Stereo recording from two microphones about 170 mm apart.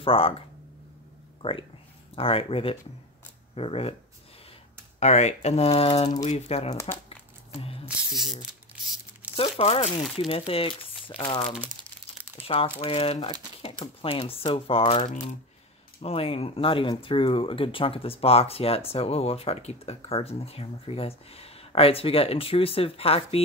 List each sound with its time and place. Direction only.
0.0 s speech: 35° left (ahead or behind)
1.4 s speech: 30° left (ahead or behind)
5.0 s speech: 40° left (ahead or behind)
6.7 s speech: 15° left (ahead or behind)
7.1 s a sound: 35° left (ahead or behind)
9.2 s crumpling: 10° right (ahead or behind)
9.6 s speech: 40° left (ahead or behind)